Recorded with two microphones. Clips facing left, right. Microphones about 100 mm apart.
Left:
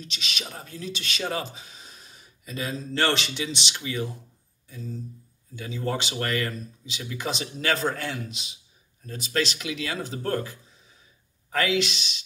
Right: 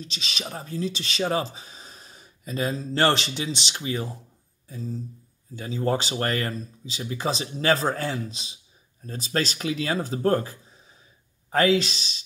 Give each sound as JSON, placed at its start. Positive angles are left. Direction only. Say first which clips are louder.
{"t": 0.0, "sound": "speech", "louder": "right 1 dB", "side_deg": -35}